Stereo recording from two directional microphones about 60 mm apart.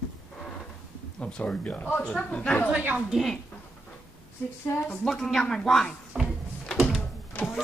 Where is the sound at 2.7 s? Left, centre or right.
Right.